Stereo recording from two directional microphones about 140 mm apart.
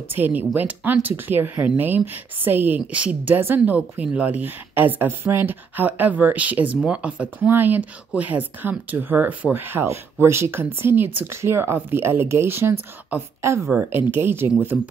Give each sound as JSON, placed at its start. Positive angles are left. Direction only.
{"t": 0.1, "sound": "speech", "side_deg": -10}